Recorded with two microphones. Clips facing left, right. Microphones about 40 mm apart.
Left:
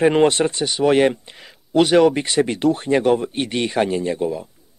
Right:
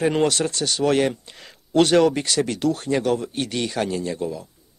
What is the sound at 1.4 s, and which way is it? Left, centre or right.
Speech, centre.